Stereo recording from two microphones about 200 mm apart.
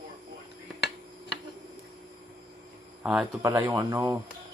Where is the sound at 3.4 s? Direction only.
15° right (ahead or behind).